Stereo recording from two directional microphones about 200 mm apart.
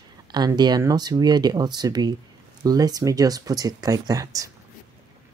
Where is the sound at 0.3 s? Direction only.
20° right (ahead or behind).